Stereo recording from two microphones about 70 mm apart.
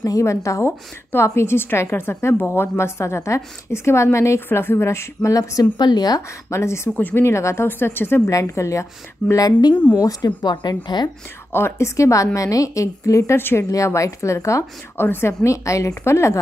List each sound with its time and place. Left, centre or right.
0.0 s a woman's voice: left
4.5 s a woman's voice: left
5.3 s a woman's voice: left
6.5 s a woman's voice: left
7.0 s speech: left
7.2 s a woman's voice: left
8.3 s a woman's voice: left
9.5 s speech: left
11.5 s a woman's voice: left
13.4 s a woman's voice: left
13.7 s a woman's voice: left
15.0 s a woman's voice: left
15.4 s a woman's voice: left